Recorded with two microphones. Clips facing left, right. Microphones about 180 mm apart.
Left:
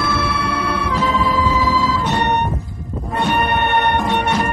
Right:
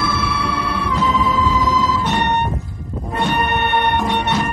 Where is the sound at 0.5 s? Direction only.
50° left (ahead or behind).